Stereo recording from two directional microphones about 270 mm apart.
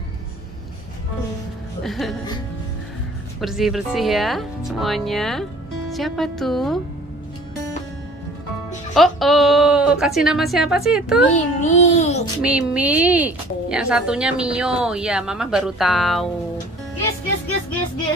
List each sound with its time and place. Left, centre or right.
1.8 s speech: centre
3.3 s a woman's voice: centre
8.9 s a woman's voice: centre
11.3 s child singing: left
12.4 s a woman's voice: centre